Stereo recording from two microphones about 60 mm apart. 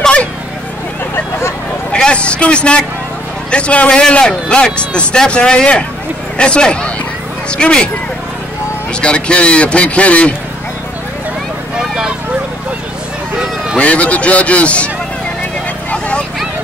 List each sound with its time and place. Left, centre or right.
0.0 s vehicle: left
1.9 s a man's voice: centre
9.0 s a man's voice: centre
13.7 s a man's voice: left